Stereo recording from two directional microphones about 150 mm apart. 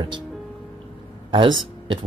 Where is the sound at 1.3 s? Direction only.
35° right (ahead or behind).